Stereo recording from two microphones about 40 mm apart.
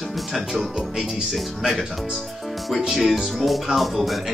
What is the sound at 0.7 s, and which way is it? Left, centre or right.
Music, centre.